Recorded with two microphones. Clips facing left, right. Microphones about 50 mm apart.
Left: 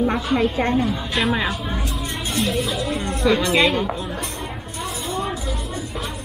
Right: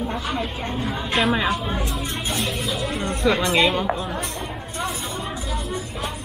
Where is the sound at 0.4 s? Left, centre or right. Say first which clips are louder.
Left 8 dB; left.